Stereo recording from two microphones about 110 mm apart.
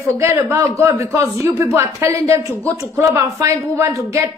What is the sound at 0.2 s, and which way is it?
Speech, 25° right (ahead or behind).